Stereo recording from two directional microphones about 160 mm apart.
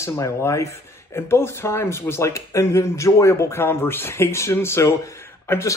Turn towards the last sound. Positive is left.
turn(degrees=15)  # may be behind; listen again after turning